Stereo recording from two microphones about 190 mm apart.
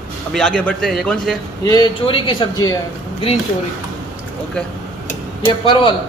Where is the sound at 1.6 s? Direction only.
25° left (ahead or behind).